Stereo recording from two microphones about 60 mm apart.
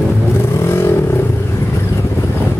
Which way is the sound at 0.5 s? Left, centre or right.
Left.